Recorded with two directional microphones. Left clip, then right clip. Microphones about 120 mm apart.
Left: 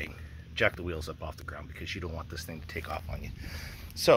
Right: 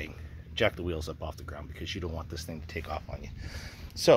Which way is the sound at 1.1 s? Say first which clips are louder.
Right 1 dB; 10° left (ahead or behind).